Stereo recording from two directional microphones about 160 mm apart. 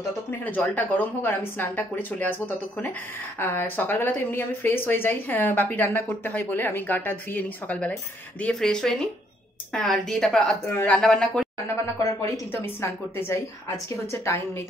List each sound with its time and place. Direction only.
0.5 s a woman's voice: 10° left (ahead or behind)
11.8 s speech: 20° left (ahead or behind)
14.1 s a woman's voice: 15° left (ahead or behind)